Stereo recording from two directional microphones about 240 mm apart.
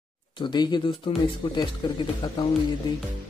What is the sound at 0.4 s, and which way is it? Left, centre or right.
Speech, centre.